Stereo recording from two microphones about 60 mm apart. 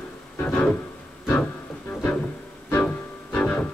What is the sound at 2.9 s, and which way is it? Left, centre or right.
Music, left.